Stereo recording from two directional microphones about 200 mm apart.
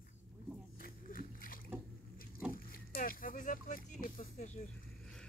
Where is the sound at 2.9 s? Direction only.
45° left (ahead or behind).